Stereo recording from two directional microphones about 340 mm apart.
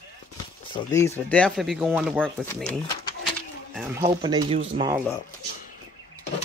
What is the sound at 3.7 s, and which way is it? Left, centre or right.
Speech, centre.